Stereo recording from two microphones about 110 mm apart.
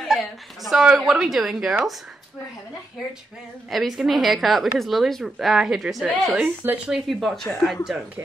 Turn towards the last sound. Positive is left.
turn(degrees=0)  # may be behind; listen again after turning